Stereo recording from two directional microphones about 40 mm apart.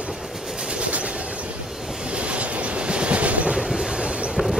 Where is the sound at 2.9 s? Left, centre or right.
Right.